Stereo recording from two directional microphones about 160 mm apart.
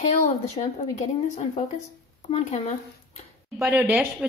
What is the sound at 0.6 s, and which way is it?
Speech, 45° left (ahead or behind).